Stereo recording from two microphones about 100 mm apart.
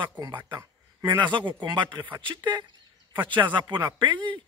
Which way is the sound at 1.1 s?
50° right (ahead or behind).